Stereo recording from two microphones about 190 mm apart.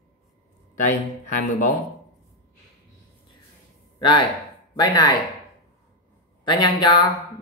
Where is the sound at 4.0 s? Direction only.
25° left (ahead or behind).